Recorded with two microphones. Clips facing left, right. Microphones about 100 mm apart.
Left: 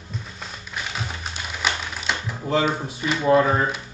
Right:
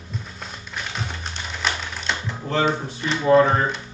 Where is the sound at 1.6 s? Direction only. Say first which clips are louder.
Even; 5° left (ahead or behind).